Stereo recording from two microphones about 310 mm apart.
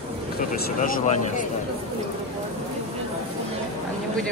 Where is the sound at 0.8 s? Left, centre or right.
Left.